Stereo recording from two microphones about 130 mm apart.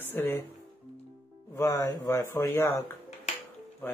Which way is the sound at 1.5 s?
20° left (ahead or behind).